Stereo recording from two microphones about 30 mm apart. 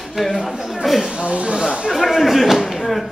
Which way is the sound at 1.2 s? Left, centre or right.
Right.